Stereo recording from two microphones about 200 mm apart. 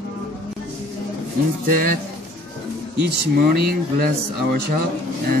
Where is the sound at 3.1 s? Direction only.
50° right (ahead or behind).